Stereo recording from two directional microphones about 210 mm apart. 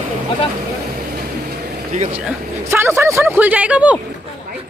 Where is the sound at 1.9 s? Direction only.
30° right (ahead or behind).